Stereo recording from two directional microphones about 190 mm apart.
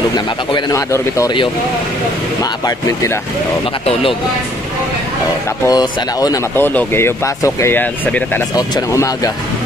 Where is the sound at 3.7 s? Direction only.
30° left (ahead or behind).